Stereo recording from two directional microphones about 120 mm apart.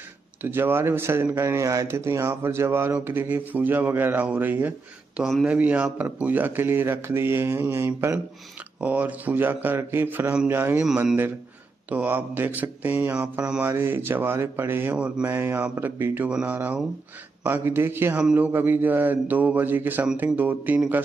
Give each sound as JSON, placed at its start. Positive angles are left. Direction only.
{"t": 0.4, "sound": "speech", "side_deg": -15}
{"t": 10.9, "sound": "speech", "side_deg": -5}